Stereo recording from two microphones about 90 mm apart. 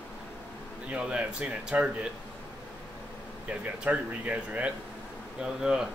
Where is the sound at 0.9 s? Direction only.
15° right (ahead or behind).